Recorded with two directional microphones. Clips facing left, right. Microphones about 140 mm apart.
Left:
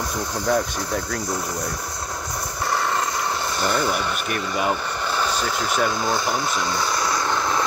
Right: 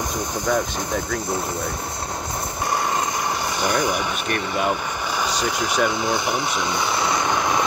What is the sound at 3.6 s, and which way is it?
Speech, 15° right (ahead or behind).